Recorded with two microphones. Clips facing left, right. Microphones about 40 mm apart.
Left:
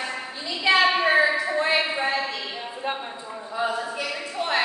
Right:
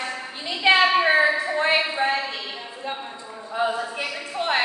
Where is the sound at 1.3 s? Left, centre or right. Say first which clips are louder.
Right 1 dB; centre.